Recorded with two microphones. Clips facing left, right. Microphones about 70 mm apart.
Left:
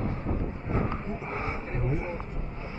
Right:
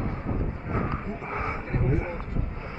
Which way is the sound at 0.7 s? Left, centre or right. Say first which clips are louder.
Even; right.